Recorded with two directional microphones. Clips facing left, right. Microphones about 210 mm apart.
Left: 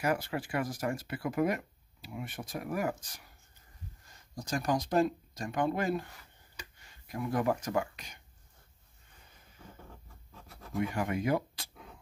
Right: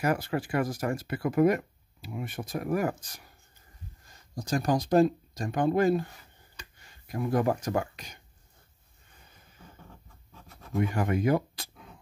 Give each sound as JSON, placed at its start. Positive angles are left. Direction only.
{"t": 0.0, "sound": "speech", "side_deg": -45}
{"t": 4.5, "sound": "speech", "side_deg": -35}
{"t": 7.1, "sound": "speech", "side_deg": -40}
{"t": 11.0, "sound": "speech", "side_deg": -50}